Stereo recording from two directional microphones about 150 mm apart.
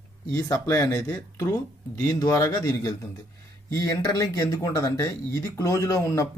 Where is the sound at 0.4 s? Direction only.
20° left (ahead or behind).